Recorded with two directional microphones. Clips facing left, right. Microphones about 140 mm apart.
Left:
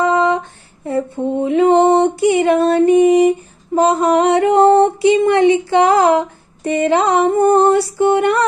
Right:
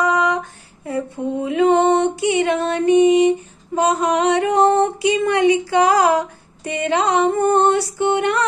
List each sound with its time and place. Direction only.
0.0 s female singing: 25° left (ahead or behind)
3.7 s a sound: 30° left (ahead or behind)
7.1 s music: 35° left (ahead or behind)